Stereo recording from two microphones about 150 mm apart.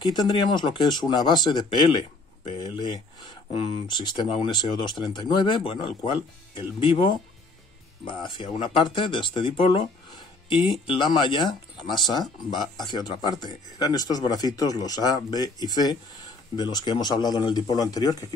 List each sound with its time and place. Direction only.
0.1 s speech: 30° left (ahead or behind)